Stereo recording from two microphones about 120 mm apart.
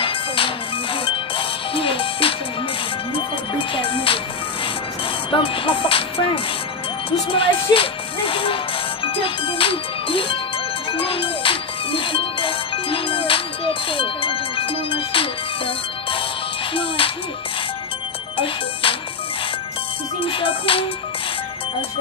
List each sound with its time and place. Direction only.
1.0 s music: 50° left (ahead or behind)
3.5 s music: 45° left (ahead or behind)
5.3 s music: 45° left (ahead or behind)
7.1 s speech: 50° left (ahead or behind)
9.0 s music: 50° left (ahead or behind)
18.4 s music: 50° left (ahead or behind)
20.2 s music: 45° left (ahead or behind)